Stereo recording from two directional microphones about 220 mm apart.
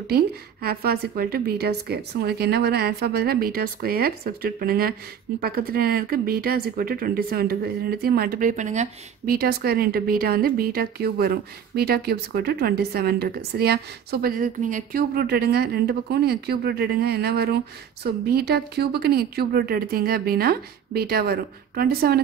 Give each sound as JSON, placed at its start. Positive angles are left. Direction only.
{"t": 0.0, "sound": "speech", "side_deg": -45}